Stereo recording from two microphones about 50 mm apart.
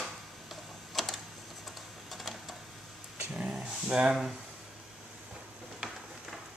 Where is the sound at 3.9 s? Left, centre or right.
Right.